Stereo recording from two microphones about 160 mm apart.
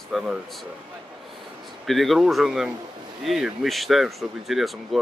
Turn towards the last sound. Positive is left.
turn(degrees=0)  # may be behind; listen again after turning